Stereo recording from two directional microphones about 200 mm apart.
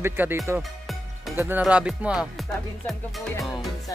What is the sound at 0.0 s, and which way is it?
Music, 10° right (ahead or behind).